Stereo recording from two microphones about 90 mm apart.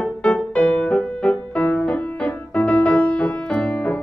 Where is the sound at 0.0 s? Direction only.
5° left (ahead or behind).